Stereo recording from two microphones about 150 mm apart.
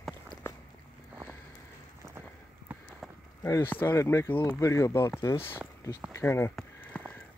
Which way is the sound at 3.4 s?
15° left (ahead or behind).